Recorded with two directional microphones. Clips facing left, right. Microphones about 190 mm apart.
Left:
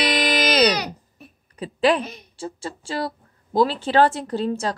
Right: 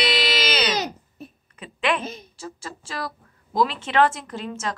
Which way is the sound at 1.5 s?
35° left (ahead or behind).